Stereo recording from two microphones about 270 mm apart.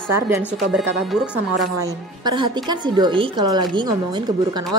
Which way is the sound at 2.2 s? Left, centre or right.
Centre.